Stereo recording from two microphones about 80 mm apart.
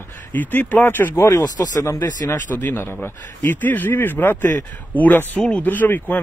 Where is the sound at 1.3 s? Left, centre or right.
Left.